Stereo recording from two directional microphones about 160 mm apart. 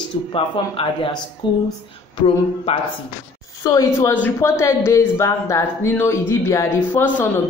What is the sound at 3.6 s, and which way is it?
A woman's voice, 20° left (ahead or behind).